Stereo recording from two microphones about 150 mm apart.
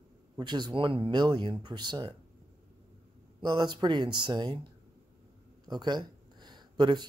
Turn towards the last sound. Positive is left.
turn(degrees=-30)  # may be behind; listen again after turning